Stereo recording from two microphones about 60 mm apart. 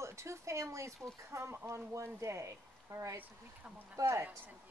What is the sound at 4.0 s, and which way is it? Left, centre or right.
Speech, right.